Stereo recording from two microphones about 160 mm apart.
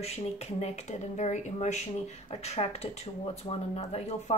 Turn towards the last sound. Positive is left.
turn(degrees=40)  # may be behind; listen again after turning